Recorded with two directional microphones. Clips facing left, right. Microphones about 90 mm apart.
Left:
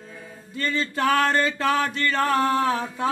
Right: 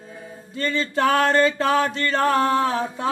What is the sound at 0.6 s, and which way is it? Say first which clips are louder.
Music: right 3 dB; 30° right (ahead or behind).